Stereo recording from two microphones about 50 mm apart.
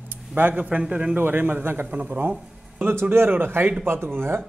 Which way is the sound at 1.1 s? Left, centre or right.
Right.